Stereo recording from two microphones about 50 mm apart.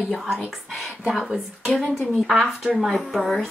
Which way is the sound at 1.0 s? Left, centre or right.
Centre.